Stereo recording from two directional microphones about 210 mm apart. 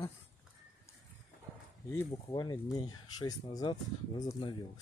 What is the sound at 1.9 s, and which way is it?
Speech, 15° left (ahead or behind).